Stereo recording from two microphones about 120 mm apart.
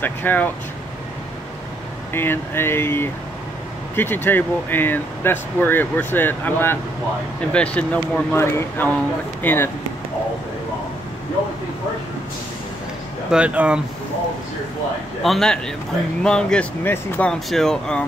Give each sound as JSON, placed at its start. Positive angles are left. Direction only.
{"t": 0.0, "sound": "speech", "side_deg": 15}
{"t": 2.1, "sound": "speech", "side_deg": 20}
{"t": 8.4, "sound": "speech", "side_deg": 20}
{"t": 13.3, "sound": "speech", "side_deg": -10}
{"t": 15.2, "sound": "speech", "side_deg": 5}